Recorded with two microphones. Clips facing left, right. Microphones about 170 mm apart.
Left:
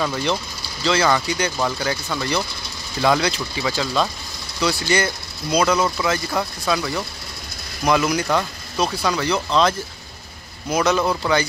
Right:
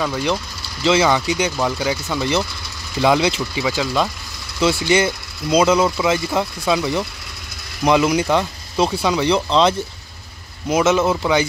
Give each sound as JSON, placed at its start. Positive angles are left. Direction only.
{"t": 0.8, "sound": "speech", "side_deg": -20}
{"t": 3.6, "sound": "speech", "side_deg": -10}
{"t": 4.6, "sound": "speech", "side_deg": -20}
{"t": 5.8, "sound": "speech", "side_deg": -15}